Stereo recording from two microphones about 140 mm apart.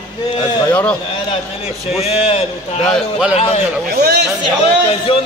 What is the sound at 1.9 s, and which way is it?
Speech, 45° left (ahead or behind).